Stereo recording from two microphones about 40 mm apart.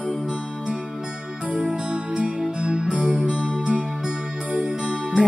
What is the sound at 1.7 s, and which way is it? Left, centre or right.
Music, right.